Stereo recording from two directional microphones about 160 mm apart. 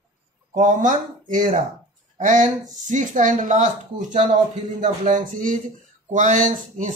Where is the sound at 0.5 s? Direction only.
50° right (ahead or behind).